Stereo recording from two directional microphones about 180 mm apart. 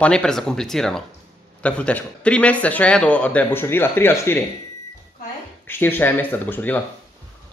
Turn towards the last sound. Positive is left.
turn(degrees=10)  # may be behind; listen again after turning